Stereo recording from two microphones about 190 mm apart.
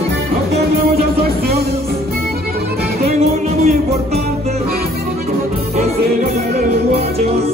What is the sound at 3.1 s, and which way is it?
Music, 35° right (ahead or behind).